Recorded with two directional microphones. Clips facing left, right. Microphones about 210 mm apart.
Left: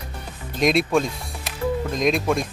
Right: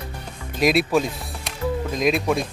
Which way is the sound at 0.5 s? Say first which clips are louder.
Even; 5° right (ahead or behind).